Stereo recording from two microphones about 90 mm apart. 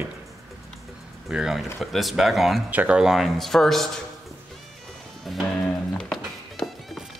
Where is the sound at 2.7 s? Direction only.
15° right (ahead or behind); by 3.9 s 5° left (ahead or behind).